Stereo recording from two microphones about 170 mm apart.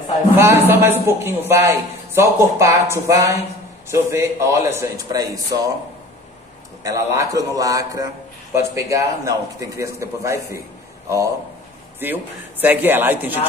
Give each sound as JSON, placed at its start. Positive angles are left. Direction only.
{"t": 0.4, "sound": "a man's voice", "side_deg": -15}
{"t": 6.8, "sound": "a man's voice", "side_deg": -20}